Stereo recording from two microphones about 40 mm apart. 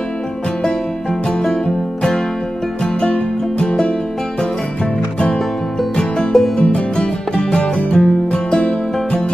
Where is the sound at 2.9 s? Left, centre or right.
Left.